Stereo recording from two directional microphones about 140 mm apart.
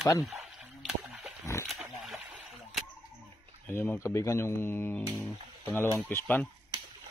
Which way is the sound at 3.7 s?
15° left (ahead or behind).